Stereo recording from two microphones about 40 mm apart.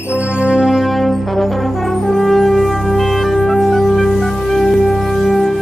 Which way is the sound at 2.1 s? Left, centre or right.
Centre.